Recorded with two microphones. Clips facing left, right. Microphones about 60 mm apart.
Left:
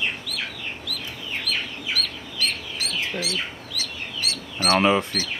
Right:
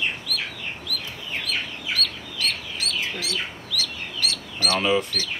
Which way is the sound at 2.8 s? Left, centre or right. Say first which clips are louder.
Left 1 dB; left.